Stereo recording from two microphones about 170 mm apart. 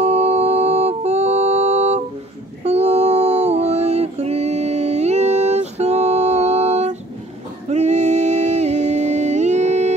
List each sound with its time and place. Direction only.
0.0 s music: 40° right (ahead or behind)
2.6 s a sound: 40° right (ahead or behind)
7.7 s music: 40° right (ahead or behind)